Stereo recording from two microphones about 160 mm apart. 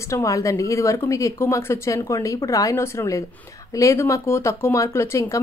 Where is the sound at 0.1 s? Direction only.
20° left (ahead or behind).